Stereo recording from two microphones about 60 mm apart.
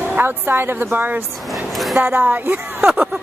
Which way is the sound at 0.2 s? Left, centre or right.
Right.